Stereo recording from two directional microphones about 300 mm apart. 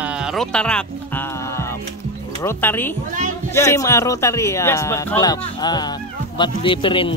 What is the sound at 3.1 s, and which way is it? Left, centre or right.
Speech, right.